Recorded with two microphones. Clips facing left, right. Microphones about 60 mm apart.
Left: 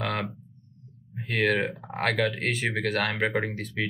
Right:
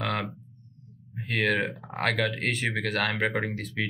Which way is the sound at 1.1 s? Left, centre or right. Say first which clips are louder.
Left 1 dB; centre.